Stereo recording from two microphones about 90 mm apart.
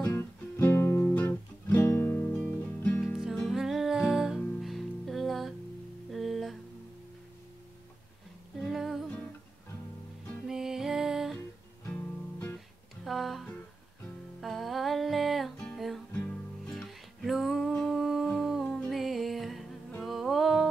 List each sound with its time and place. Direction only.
0.2 s music: 25° left (ahead or behind)
1.1 s guitar: 20° left (ahead or behind)
2.3 s music: 15° left (ahead or behind)
3.3 s music: centre (ahead or behind)
8.5 s music: centre (ahead or behind)
10.5 s music: 5° right (ahead or behind)
11.9 s music: 25° left (ahead or behind)
13.0 s music: centre (ahead or behind)
17.7 s humming: centre (ahead or behind)
18.9 s music: centre (ahead or behind)